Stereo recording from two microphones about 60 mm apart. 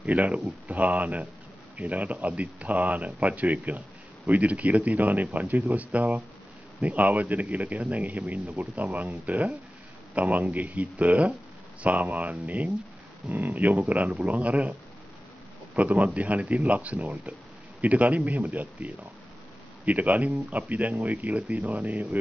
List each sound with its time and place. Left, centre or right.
0.0 s speech: right
13.3 s speech: right
14.0 s speech: right